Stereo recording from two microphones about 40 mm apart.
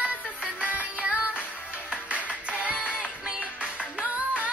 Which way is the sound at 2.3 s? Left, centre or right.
Right.